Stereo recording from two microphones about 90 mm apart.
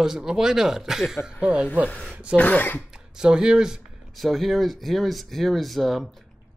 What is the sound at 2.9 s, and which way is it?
Speech, 10° right (ahead or behind).